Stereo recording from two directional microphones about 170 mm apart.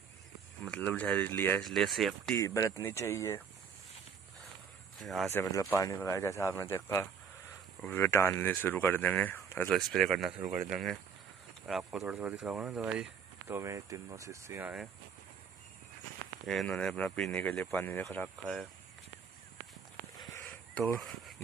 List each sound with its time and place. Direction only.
0.7 s speech: 5° left (ahead or behind)
2.3 s speech: 20° left (ahead or behind)
5.0 s speech: centre (ahead or behind)
5.3 s speech: 20° left (ahead or behind); by 14.9 s 10° right (ahead or behind)
16.4 s speech: 5° left (ahead or behind)
20.2 s a sound: 15° left (ahead or behind)